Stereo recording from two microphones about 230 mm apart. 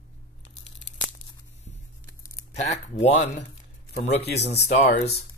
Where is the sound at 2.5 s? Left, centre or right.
Left.